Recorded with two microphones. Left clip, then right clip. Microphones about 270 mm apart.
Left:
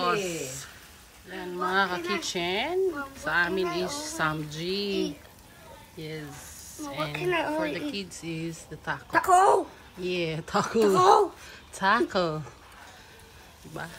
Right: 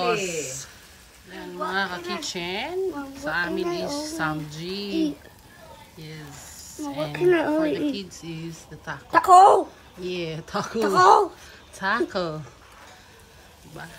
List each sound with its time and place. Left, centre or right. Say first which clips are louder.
0.0 s speech: right 3 dB; centre
5.9 s speech: left 5 dB; centre
7.2 s a woman's voice: right 8 dB; right
7.5 s speech: right 6 dB; centre
9.1 s a woman's voice: right 7 dB; right
9.9 s speech: left 1 dB; centre
13.7 s speech: left 2 dB; centre